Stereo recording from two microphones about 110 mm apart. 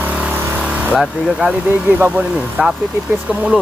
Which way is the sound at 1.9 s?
15° right (ahead or behind).